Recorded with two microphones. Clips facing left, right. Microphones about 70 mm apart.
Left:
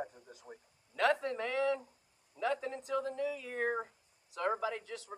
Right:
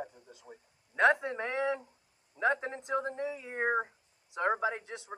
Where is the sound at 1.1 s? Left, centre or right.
Right.